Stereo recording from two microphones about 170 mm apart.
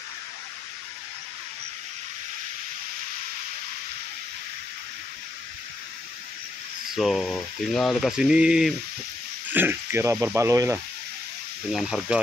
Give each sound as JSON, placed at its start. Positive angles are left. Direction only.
{"t": 6.9, "sound": "speech", "side_deg": 0}
{"t": 11.7, "sound": "speech", "side_deg": -5}